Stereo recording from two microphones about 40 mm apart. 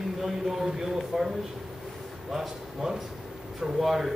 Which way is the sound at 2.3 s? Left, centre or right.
Centre.